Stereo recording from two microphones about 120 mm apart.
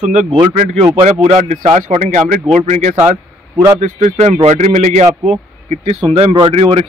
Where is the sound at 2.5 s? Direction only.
75° right (ahead or behind).